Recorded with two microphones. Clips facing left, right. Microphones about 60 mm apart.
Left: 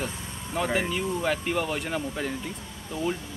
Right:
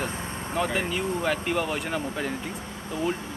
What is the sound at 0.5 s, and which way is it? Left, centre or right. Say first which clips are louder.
Speech: even; centre.